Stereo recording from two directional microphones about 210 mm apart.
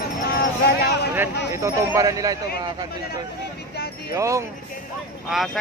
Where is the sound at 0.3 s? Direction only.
50° left (ahead or behind).